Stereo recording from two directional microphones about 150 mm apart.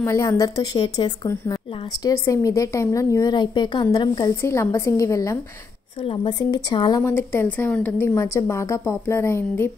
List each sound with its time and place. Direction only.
0.0 s a woman's voice: 20° left (ahead or behind)
4.4 s a woman's voice: 20° left (ahead or behind)
6.0 s speech: 30° left (ahead or behind)
7.0 s a woman's voice: 15° left (ahead or behind)